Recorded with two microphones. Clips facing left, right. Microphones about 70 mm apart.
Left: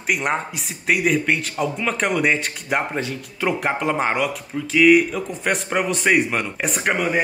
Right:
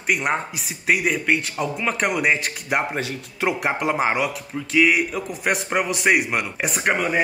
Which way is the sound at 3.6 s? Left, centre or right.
Centre.